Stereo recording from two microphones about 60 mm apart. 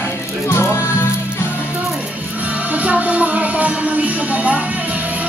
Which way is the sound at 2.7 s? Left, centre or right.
Right.